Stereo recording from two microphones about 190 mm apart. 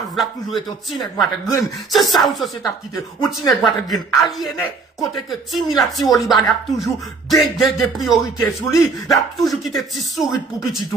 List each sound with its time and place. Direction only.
0.1 s speech: centre (ahead or behind)